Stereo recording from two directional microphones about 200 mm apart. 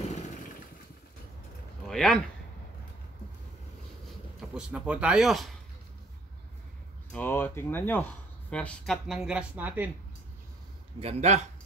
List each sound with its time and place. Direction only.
0.0 s motorcycle: 35° left (ahead or behind)
1.9 s a man's voice: centre (ahead or behind)
4.4 s speech: 5° right (ahead or behind)
7.1 s speech: 10° left (ahead or behind); by 9.8 s 10° right (ahead or behind)
11.0 s speech: 30° right (ahead or behind)